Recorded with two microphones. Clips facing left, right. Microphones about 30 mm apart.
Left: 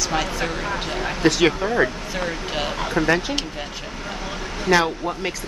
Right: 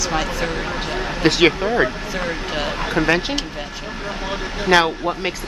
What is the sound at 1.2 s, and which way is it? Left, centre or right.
Speech, right.